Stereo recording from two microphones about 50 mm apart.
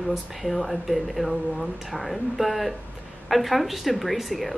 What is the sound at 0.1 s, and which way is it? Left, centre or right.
A woman's voice, centre.